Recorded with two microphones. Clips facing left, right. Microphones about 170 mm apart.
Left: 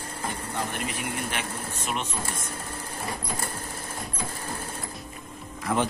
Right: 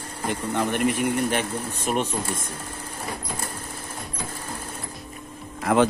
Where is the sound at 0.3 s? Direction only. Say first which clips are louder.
Right 9 dB; 65° right (ahead or behind).